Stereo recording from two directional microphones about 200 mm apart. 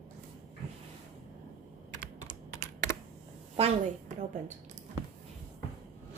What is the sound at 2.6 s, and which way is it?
Computer keyboard, 35° right (ahead or behind).